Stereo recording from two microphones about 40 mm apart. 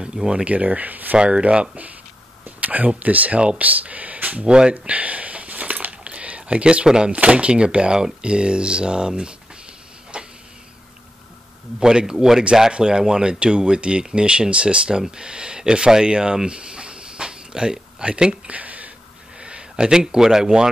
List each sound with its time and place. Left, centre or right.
0.0 s speech: right
0.5 s speech: right
1.1 s speech: right
4.5 s speech: right
4.9 s a sound: right
7.2 s speech: right
10.1 s tick-tock: right
11.8 s speech: centre
15.9 s a sound: centre; by 18.9 s right
19.7 s speech: centre